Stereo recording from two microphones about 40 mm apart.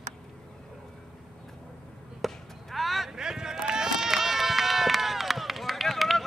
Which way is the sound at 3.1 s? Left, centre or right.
Centre.